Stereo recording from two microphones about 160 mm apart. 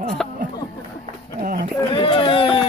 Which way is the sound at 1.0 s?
60° right (ahead or behind).